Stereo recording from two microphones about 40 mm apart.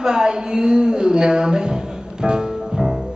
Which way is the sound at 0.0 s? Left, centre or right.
Centre.